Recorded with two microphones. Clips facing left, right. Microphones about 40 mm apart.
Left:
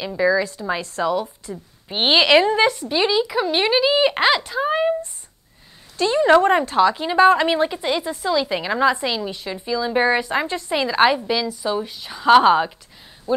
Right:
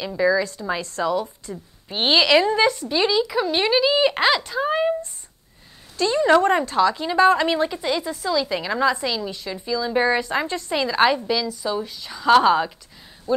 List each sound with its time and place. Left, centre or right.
0.0 s a woman's voice: centre
1.9 s a woman's voice: centre
5.9 s a woman's voice: centre